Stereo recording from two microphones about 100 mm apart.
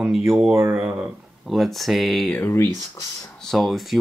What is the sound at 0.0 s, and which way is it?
Speech, 5° right (ahead or behind).